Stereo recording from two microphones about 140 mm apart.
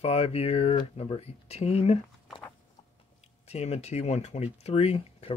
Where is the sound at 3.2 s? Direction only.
50° left (ahead or behind).